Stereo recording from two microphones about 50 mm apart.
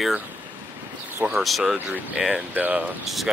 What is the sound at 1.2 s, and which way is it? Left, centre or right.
Speech, right.